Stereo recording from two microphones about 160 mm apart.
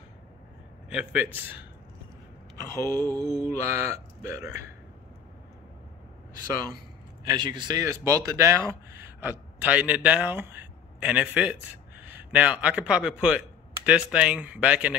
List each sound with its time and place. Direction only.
0.8 s speech: 10° right (ahead or behind)
2.7 s a sound: 20° left (ahead or behind)
3.4 s speech: 15° right (ahead or behind)
7.2 s a man's voice: 25° right (ahead or behind); by 15.0 s 10° right (ahead or behind)